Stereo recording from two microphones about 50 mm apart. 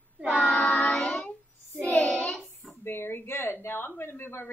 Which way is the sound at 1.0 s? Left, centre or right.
Left.